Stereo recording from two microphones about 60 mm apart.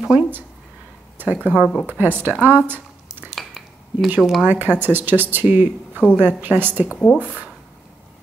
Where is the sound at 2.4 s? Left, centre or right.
Right.